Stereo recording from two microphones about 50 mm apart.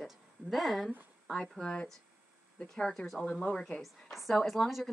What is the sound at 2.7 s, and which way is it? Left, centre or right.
Speech, centre.